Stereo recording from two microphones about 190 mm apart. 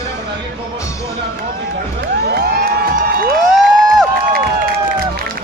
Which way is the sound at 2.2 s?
55° right (ahead or behind).